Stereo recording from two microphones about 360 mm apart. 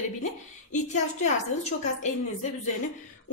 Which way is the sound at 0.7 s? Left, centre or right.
Left.